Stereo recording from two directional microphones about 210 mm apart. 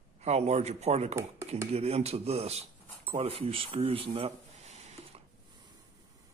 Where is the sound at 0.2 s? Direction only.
30° right (ahead or behind).